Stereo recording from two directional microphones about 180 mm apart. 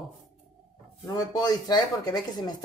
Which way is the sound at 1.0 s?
20° left (ahead or behind).